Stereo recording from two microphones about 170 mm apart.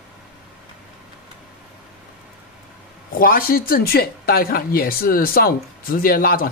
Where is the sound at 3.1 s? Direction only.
55° left (ahead or behind).